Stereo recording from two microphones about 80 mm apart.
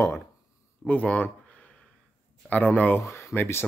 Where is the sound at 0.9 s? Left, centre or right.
Centre.